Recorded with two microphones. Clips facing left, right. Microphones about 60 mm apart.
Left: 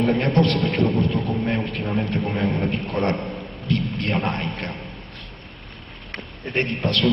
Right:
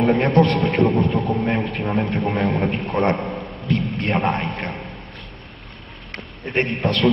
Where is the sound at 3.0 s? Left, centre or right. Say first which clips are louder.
Right 4 dB; centre.